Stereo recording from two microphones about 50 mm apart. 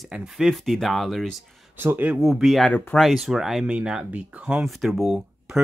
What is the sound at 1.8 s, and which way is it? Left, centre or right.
Speech, right.